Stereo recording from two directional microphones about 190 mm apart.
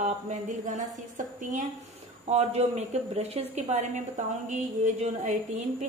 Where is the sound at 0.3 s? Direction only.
40° right (ahead or behind).